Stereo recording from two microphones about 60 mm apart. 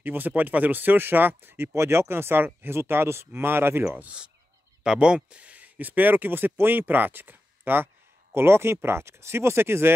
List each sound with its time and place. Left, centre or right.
0.0 s speech: right
1.7 s speech: right
4.8 s speech: centre; by 9.9 s right